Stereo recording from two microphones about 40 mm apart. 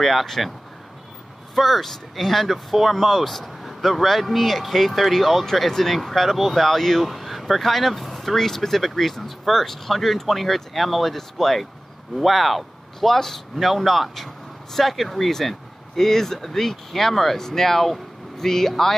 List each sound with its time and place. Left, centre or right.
0.0 s speech: centre
1.5 s speech: centre
5.4 s speech: centre